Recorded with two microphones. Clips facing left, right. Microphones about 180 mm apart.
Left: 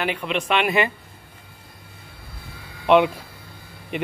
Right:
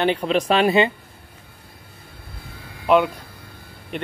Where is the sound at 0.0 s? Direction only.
35° right (ahead or behind).